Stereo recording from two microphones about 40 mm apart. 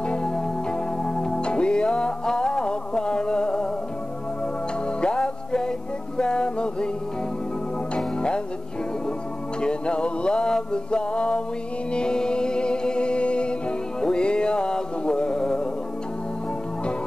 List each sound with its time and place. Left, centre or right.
0.0 s music: left
4.8 s music: left
9.6 s music: left